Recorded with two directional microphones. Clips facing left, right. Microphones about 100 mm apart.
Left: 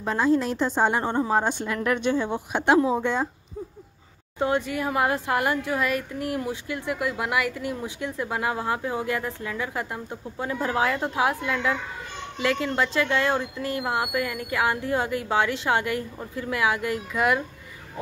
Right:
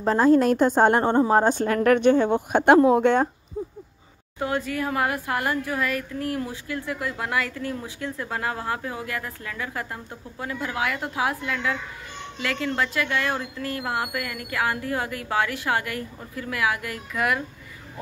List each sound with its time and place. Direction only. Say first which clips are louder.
0.0 s a woman's voice: right 5 dB; 35° right (ahead or behind)
0.3 s speech: right 6 dB; 50° right (ahead or behind)
3.6 s a sound: right 5 dB; 30° right (ahead or behind)
4.4 s speech: left 2 dB; 20° left (ahead or behind)